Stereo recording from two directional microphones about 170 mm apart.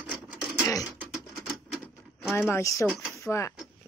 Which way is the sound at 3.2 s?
15° left (ahead or behind).